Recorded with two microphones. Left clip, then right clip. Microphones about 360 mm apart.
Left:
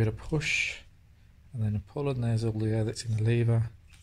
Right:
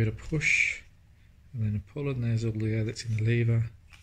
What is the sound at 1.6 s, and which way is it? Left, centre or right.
Speech, left.